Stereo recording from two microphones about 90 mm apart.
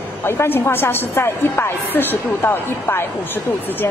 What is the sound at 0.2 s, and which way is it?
A woman's voice, 25° left (ahead or behind).